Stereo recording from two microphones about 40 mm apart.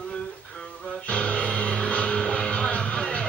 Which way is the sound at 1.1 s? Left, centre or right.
Left.